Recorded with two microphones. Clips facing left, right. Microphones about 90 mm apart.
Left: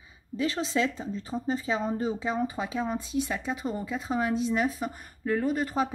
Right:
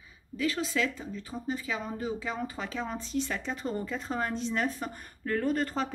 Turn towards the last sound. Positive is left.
turn(degrees=10)  # may be behind; listen again after turning